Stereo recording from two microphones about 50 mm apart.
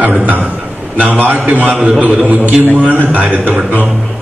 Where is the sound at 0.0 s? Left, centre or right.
Right.